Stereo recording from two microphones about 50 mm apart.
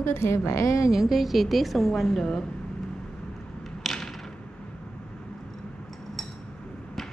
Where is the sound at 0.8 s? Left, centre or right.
Centre.